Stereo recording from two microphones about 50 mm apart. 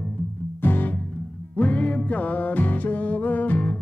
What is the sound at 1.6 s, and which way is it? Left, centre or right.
Music, left.